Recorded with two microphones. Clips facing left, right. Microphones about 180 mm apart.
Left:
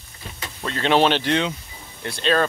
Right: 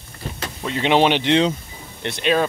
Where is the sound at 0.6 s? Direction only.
15° right (ahead or behind).